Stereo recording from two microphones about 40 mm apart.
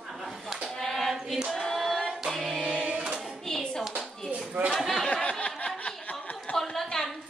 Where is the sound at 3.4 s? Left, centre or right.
Centre.